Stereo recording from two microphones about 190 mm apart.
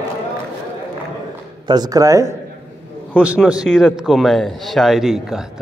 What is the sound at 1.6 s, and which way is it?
A man's voice, 20° right (ahead or behind).